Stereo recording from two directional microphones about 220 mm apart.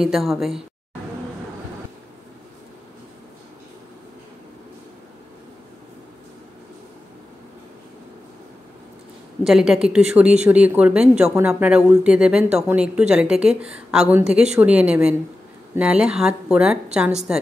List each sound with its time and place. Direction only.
0.0 s speech: centre (ahead or behind)
9.4 s speech: centre (ahead or behind)